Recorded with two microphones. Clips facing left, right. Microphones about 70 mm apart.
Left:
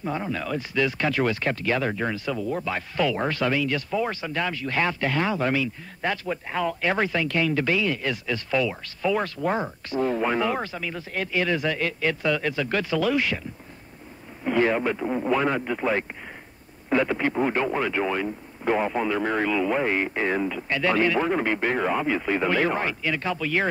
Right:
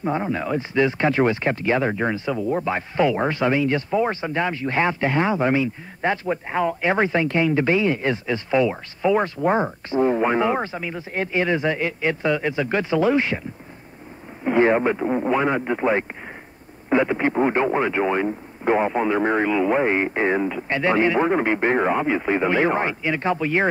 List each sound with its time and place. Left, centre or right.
0.0 s speech: right
14.4 s speech: right